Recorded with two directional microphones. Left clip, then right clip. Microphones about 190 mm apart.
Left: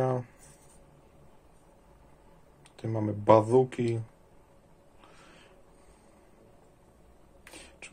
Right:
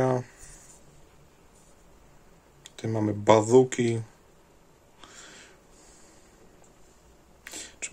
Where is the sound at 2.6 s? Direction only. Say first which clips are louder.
Right 4 dB; 20° right (ahead or behind).